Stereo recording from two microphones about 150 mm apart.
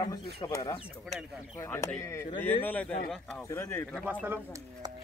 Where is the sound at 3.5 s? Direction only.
15° left (ahead or behind).